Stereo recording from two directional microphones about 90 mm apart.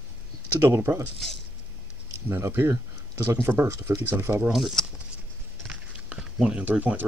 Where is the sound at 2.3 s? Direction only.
25° right (ahead or behind).